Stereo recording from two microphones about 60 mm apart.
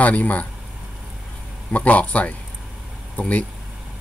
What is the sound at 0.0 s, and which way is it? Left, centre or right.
Speech, left.